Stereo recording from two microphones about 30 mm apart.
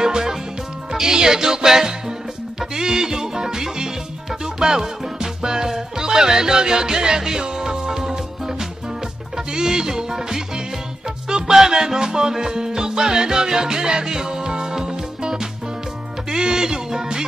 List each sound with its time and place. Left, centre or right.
0.0 s music: centre